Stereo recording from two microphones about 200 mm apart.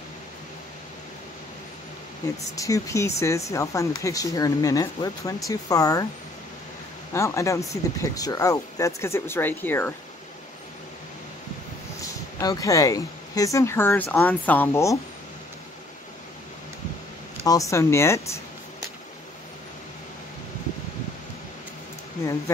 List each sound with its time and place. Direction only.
2.5 s speech: 15° left (ahead or behind)
7.2 s speech: 15° left (ahead or behind)
12.0 s speech: 15° left (ahead or behind)
17.5 s speech: 15° left (ahead or behind)